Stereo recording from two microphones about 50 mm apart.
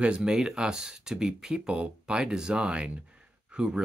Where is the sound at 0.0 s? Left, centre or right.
Centre.